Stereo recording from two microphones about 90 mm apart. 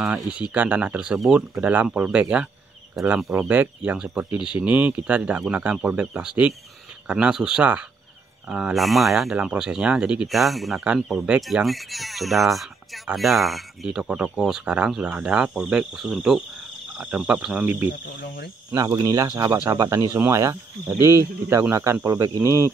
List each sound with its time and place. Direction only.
0.0 s speech: 15° right (ahead or behind)
10.2 s speech: centre (ahead or behind); by 17.9 s 20° right (ahead or behind)
18.8 s speech: 40° right (ahead or behind)